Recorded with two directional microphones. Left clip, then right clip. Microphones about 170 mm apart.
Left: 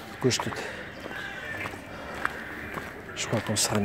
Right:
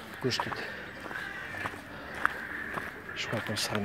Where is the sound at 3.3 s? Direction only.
25° left (ahead or behind).